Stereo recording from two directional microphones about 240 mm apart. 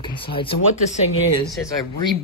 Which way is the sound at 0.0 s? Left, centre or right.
Left.